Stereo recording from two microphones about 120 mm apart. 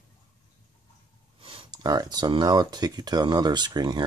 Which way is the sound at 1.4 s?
50° right (ahead or behind).